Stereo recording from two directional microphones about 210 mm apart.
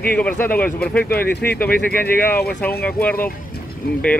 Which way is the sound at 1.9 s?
45° left (ahead or behind).